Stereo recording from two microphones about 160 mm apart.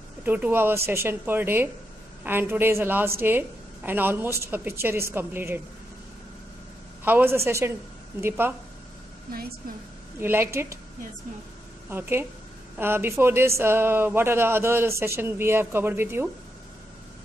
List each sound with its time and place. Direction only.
0.2 s a woman's voice: 10° right (ahead or behind)
7.1 s a woman's voice: 15° right (ahead or behind)
10.2 s a woman's voice: 15° right (ahead or behind)
11.9 s a woman's voice: 15° right (ahead or behind)